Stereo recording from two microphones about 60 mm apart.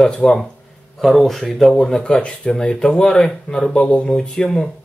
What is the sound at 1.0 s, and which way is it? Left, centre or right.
Speech, centre.